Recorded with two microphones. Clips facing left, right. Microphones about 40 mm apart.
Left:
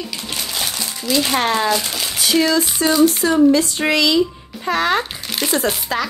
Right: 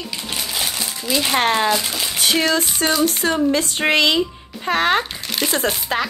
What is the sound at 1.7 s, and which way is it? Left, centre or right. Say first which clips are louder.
Speech: even; centre.